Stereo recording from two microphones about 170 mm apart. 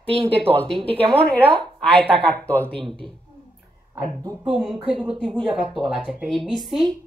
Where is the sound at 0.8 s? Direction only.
30° right (ahead or behind).